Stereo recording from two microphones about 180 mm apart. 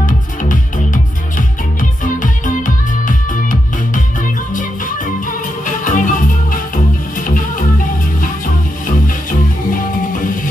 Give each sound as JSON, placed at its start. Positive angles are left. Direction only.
{"t": 0.0, "sound": "music", "side_deg": 45}
{"t": 2.4, "sound": "music", "side_deg": 45}
{"t": 5.9, "sound": "music", "side_deg": 45}
{"t": 7.2, "sound": "music", "side_deg": 50}
{"t": 8.8, "sound": "music", "side_deg": 50}